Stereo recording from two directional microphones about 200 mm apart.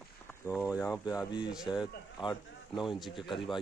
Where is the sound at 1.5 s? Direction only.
5° right (ahead or behind).